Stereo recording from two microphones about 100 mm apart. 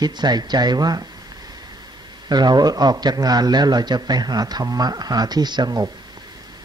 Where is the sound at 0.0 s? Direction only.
45° right (ahead or behind).